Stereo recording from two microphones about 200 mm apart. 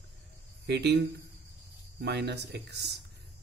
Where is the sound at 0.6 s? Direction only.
55° right (ahead or behind).